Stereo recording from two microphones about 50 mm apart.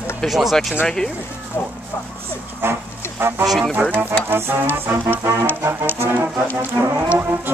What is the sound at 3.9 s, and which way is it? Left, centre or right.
Speech, right.